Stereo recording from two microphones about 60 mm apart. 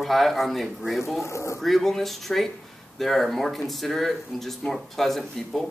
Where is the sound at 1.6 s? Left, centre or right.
Centre.